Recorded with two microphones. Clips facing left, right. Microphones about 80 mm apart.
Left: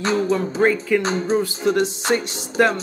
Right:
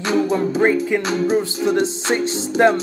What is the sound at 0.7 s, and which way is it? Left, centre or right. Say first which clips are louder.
Music: left 2 dB; right.